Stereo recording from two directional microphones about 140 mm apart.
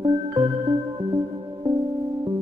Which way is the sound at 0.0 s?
35° right (ahead or behind).